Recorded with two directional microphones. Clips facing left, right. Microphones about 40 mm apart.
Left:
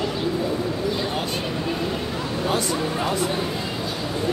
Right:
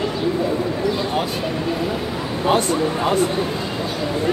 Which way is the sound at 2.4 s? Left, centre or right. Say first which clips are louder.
Right 7 dB; right.